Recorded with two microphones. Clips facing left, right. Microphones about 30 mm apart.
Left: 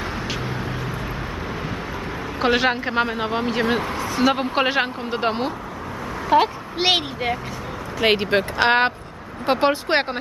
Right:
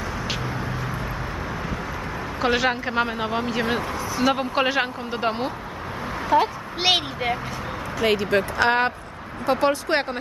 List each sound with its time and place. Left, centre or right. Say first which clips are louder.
2.4 s speech: left 2 dB; centre
6.3 s a woman's voice: left 3 dB; left
6.8 s speech: left 1 dB; centre
8.0 s speech: left 2 dB; left